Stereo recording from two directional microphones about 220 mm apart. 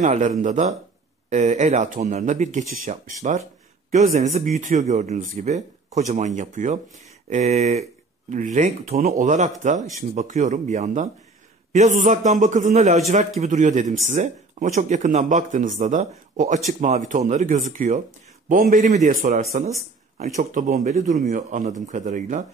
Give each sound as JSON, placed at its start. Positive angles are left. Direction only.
{"t": 0.0, "sound": "speech", "side_deg": -30}